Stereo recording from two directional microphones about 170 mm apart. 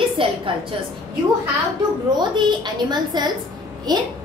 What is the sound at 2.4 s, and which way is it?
A woman's voice, 25° right (ahead or behind).